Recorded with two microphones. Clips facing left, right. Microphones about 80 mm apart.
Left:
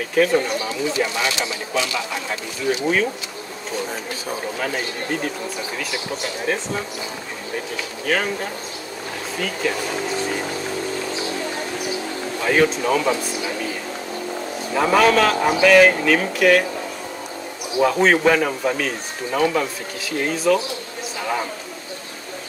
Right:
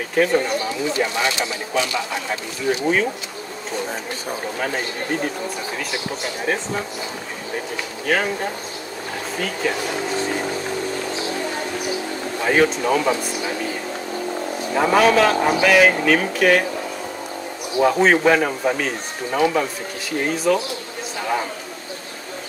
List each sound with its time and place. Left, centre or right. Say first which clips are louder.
0.1 s speech: left 1 dB; centre
0.9 s speech: right 2 dB; centre
4.6 s speech: right 1 dB; centre
6.4 s speech: right 1 dB; centre
8.1 s speech: right 1 dB; centre
12.4 s speech: even; centre
14.7 s speech: even; centre
17.8 s speech: right 1 dB; centre
21.2 s a sound: right 1 dB; centre